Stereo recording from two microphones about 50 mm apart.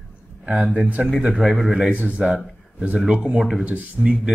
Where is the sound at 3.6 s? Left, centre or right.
Right.